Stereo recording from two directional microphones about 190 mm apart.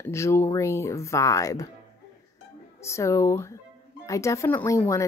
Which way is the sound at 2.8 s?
15° left (ahead or behind).